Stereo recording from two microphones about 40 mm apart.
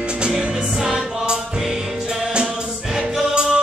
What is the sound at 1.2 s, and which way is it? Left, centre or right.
Music, right.